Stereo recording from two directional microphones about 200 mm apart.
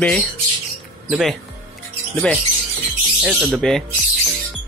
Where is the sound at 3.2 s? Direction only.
Centre (ahead or behind).